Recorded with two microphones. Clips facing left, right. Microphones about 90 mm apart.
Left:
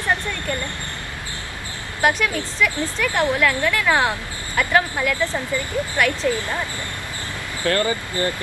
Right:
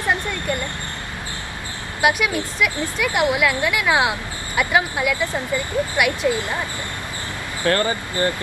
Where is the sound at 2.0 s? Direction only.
10° right (ahead or behind).